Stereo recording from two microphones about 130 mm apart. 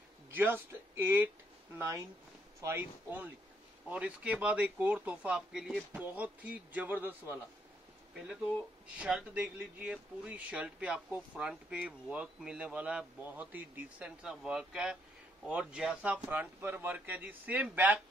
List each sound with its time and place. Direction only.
0.3 s speech: 15° right (ahead or behind)
8.9 s speech: 10° right (ahead or behind)